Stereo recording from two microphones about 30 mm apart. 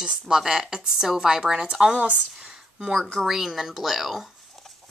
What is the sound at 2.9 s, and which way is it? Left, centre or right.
Speech, centre.